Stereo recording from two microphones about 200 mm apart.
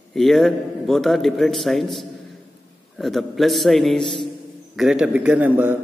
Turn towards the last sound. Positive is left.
turn(degrees=-10)  # may be behind; listen again after turning